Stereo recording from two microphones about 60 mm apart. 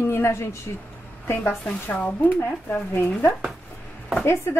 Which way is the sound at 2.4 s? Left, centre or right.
Left.